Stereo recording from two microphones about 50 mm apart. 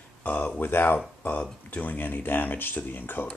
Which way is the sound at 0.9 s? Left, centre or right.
Left.